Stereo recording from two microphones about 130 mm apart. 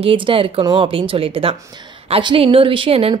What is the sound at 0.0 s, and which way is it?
A woman's voice, 45° right (ahead or behind).